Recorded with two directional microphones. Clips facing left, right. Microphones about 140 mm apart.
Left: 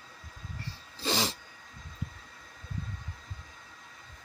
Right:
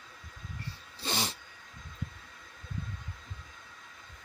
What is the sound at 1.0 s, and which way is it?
Cat, 90° left.